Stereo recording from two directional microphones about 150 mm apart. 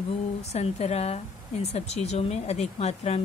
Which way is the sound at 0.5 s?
45° left (ahead or behind).